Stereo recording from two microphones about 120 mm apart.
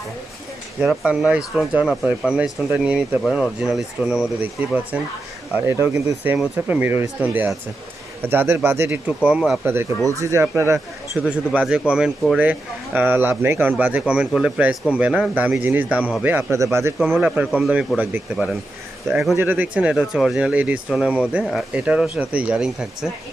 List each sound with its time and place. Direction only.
0.7 s speech: 5° right (ahead or behind); by 6.1 s 25° right (ahead or behind)
6.2 s speech: 15° right (ahead or behind)
10.0 s speech: 25° right (ahead or behind)
11.1 s speech: 5° right (ahead or behind); by 16.9 s 25° right (ahead or behind)
17.0 s speech: 10° right (ahead or behind)
19.0 s speech: centre (ahead or behind)
19.3 s speech: 15° right (ahead or behind)